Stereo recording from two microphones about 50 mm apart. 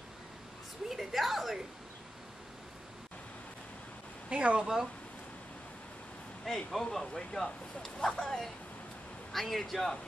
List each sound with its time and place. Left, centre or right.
0.8 s a sound: centre
4.3 s speech: right
4.6 s speech: centre
6.4 s a man's voice: centre